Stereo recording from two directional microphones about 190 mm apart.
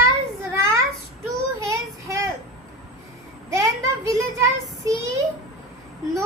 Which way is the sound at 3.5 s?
15° right (ahead or behind).